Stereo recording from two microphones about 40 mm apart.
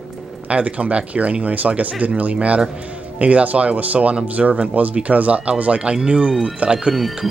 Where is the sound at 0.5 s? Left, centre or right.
Right.